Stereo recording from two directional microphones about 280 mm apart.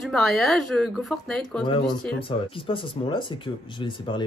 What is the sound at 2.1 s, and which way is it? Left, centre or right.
Speech, centre.